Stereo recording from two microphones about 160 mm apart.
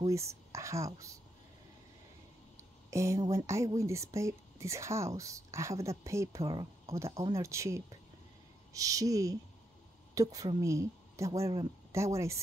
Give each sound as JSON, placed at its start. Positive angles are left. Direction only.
{"t": 0.1, "sound": "speech", "side_deg": -20}
{"t": 2.9, "sound": "speech", "side_deg": -20}